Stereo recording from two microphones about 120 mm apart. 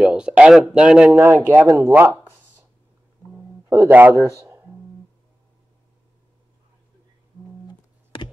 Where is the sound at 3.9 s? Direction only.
15° right (ahead or behind).